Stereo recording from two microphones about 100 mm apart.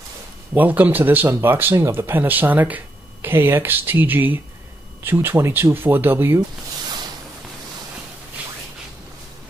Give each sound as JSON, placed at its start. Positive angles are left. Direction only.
{"t": 0.6, "sound": "speech", "side_deg": -15}